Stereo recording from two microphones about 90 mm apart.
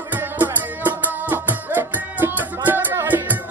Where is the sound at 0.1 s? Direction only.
20° right (ahead or behind).